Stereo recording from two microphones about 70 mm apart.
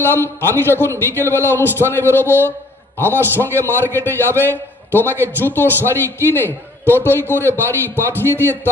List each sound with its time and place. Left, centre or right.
0.0 s a man's voice: left